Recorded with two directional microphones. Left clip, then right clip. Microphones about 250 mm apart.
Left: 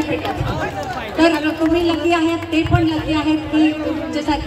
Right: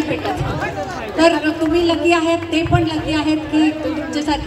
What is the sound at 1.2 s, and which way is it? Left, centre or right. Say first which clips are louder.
A woman's voice: right 1 dB; right.